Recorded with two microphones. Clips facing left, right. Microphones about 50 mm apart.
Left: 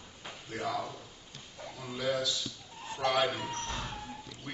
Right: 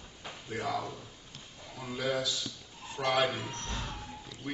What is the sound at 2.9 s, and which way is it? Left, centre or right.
Speech, centre.